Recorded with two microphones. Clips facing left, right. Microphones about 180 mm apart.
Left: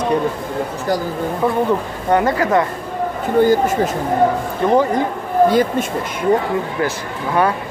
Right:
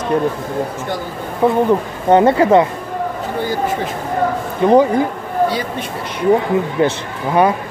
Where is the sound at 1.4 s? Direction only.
20° right (ahead or behind).